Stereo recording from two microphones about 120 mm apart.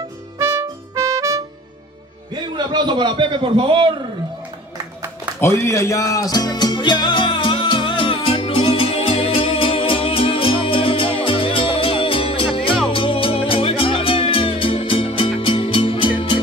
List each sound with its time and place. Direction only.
0.4 s music: 20° right (ahead or behind)
2.4 s a man's voice: 40° right (ahead or behind)
5.4 s music: 20° left (ahead or behind); by 16.3 s 45° left (ahead or behind)